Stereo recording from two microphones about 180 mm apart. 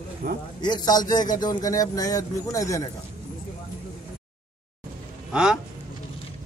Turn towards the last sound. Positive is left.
turn(degrees=-5)  # may be behind; listen again after turning